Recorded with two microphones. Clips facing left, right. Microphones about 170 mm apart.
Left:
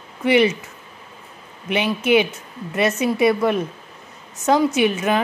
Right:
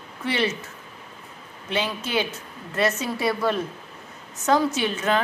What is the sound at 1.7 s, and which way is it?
A woman's voice, 15° left (ahead or behind).